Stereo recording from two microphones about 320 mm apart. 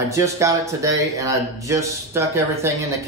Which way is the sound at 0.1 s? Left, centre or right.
Centre.